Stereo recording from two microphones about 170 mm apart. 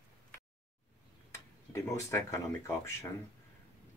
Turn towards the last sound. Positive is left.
turn(degrees=15)  # may be behind; listen again after turning